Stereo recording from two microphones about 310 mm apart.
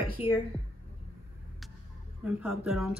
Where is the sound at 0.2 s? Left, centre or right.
Centre.